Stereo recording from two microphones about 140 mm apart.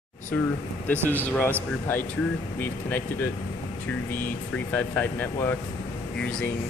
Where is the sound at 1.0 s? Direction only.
15° left (ahead or behind).